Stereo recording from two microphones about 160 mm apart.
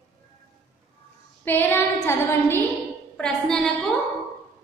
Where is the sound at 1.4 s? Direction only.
10° left (ahead or behind).